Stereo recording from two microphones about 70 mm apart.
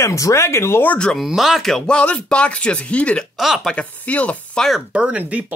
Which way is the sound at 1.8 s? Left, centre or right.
Centre.